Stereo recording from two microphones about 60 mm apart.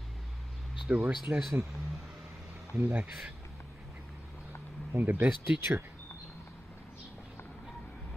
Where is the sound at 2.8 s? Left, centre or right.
Right.